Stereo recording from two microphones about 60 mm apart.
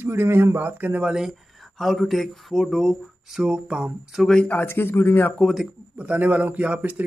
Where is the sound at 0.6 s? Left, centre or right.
Right.